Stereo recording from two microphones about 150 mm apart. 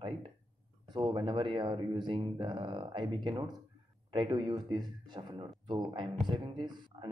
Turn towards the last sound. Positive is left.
turn(degrees=-30)  # may be behind; listen again after turning